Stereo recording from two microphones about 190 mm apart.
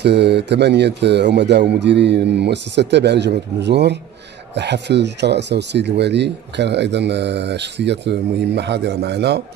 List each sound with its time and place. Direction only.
0.0 s speech: 60° right (ahead or behind)